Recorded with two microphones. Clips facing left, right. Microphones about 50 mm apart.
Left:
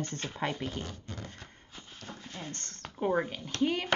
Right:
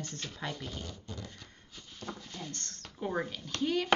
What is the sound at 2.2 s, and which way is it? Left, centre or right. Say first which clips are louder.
Speech: left 1 dB; left.